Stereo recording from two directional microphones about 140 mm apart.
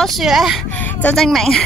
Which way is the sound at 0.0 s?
Centre (ahead or behind).